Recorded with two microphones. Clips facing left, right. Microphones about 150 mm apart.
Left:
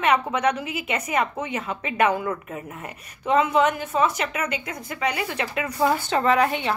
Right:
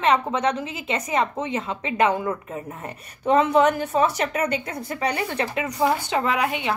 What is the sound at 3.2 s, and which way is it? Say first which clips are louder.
Speech: right 2 dB; 35° right (ahead or behind).